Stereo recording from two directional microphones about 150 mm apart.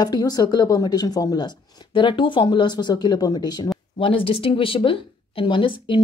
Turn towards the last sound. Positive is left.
turn(degrees=35)  # may be behind; listen again after turning